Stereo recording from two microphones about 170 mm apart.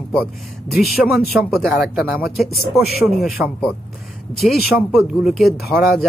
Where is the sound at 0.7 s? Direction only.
Centre (ahead or behind).